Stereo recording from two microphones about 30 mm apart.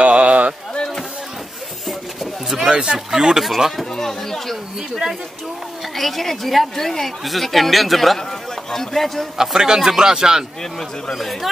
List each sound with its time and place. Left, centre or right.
0.0 s a sound: right
2.5 s speech: right
3.4 s speech: centre
3.9 s a sound: centre
5.9 s speech: centre
9.4 s speech: centre
10.6 s speech: centre
11.1 s speech: centre